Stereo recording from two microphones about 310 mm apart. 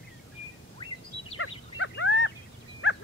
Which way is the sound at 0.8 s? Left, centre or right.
Centre.